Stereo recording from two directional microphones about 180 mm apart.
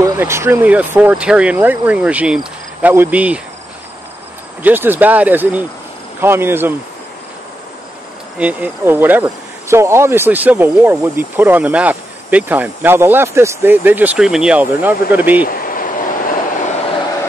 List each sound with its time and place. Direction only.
0.0 s speech: 15° right (ahead or behind)
4.6 s speech: 10° right (ahead or behind)
8.4 s speech: 10° right (ahead or behind)
15.4 s a sound: 50° left (ahead or behind)